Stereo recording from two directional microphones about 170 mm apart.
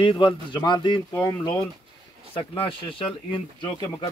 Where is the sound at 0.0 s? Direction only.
30° left (ahead or behind).